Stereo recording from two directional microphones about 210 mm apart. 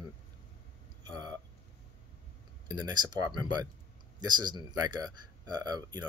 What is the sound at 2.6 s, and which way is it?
Speech, 20° right (ahead or behind).